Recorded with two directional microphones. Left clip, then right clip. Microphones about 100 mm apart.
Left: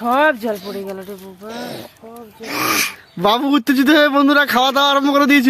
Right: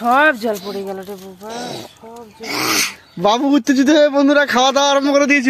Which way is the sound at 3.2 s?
25° left (ahead or behind).